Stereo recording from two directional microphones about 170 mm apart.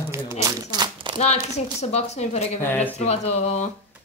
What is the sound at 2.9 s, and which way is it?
Speech, 40° left (ahead or behind).